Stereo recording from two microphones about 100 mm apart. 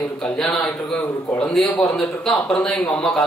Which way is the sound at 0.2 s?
5° left (ahead or behind).